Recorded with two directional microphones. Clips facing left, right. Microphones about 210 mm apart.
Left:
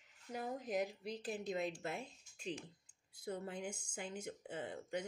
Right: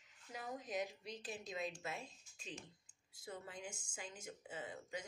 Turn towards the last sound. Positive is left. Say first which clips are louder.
# left 5 dB
turn(degrees=60)  # may be behind; listen again after turning